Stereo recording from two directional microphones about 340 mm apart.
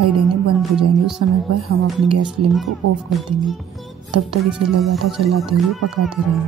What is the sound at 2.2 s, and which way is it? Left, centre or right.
Music, centre.